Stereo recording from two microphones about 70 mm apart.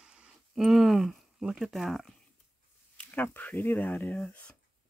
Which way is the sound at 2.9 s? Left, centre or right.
Left.